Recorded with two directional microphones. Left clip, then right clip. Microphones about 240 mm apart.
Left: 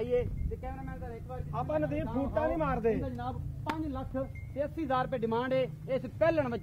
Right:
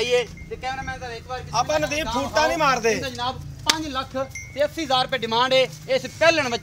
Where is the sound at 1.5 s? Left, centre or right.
Right.